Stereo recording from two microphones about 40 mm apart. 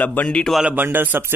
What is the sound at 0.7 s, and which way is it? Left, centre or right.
Speech, right.